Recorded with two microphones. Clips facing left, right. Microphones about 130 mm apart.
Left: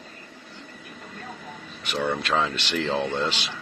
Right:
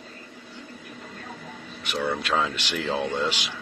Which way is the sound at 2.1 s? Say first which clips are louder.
Left 1 dB; 10° right (ahead or behind).